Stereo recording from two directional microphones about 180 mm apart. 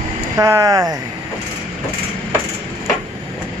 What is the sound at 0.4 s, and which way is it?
Speech, 15° right (ahead or behind).